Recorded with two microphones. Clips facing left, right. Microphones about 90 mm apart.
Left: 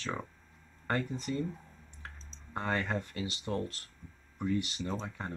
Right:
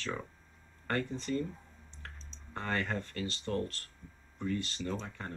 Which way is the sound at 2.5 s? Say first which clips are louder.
Left 2 dB; 15° left (ahead or behind).